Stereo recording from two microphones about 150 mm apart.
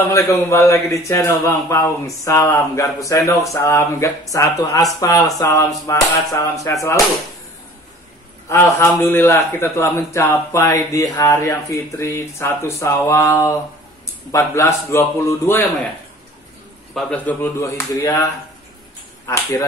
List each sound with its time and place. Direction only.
0.1 s a man's voice: 20° left (ahead or behind)
8.5 s a man's voice: 20° left (ahead or behind)
16.9 s a man's voice: 10° left (ahead or behind)